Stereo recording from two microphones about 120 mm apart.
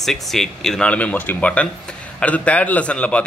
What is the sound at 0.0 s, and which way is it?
Speech, centre (ahead or behind).